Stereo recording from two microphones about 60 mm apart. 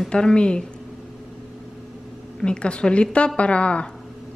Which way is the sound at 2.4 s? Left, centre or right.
Centre.